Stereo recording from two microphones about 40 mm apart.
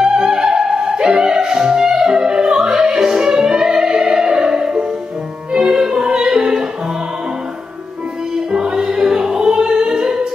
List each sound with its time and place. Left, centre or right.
0.0 s music: centre
8.5 s music: centre